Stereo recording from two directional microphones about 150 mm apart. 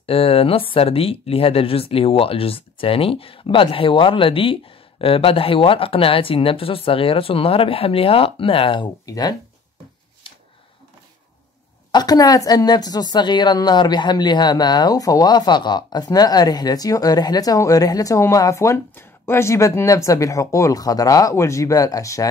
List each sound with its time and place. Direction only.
0.0 s speech: 40° left (ahead or behind)
10.3 s a sound: 35° left (ahead or behind)
11.9 s a woman's voice: 25° left (ahead or behind)